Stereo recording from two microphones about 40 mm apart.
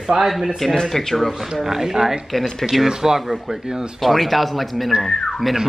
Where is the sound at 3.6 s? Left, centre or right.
Centre.